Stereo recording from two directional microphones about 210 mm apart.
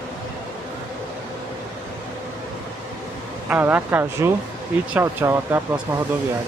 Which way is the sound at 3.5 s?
10° right (ahead or behind).